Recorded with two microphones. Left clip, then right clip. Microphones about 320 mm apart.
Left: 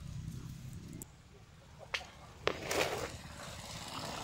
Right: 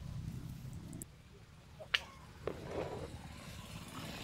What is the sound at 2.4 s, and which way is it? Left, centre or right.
Walk, left.